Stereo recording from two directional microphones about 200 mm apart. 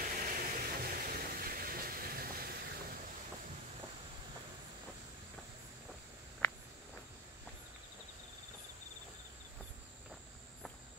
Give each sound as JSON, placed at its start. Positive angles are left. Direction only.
{"t": 0.0, "sound": "vehicle", "side_deg": -45}
{"t": 6.4, "sound": "cricket", "side_deg": 15}